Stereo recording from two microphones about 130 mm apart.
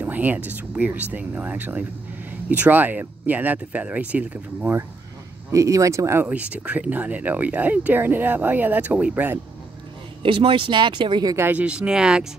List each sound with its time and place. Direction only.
0.0 s speech: 15° right (ahead or behind)
5.5 s speech: 25° right (ahead or behind)
10.2 s speech: 40° right (ahead or behind)
11.3 s speech: 15° right (ahead or behind)